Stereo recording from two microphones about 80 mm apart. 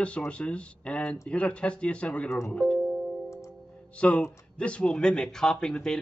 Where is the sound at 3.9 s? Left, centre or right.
Centre.